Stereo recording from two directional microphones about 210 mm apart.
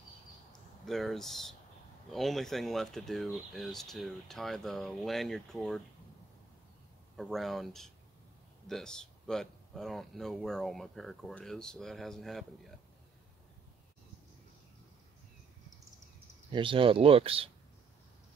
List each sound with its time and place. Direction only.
0.8 s speech: centre (ahead or behind)
7.2 s speech: centre (ahead or behind)
16.5 s speech: 25° right (ahead or behind)